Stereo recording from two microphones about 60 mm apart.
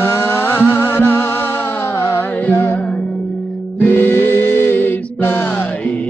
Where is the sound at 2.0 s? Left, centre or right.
Left.